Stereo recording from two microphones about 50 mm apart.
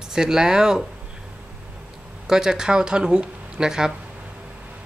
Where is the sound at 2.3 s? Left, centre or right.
Centre.